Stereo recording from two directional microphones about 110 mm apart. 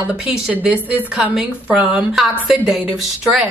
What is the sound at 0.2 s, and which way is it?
A woman's voice, 15° right (ahead or behind).